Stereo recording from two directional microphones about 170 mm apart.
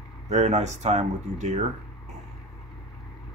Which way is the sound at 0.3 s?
40° right (ahead or behind).